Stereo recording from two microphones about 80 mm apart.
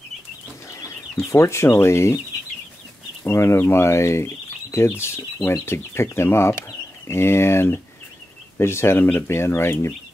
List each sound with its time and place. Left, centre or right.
1.1 s speech: left
3.3 s speech: left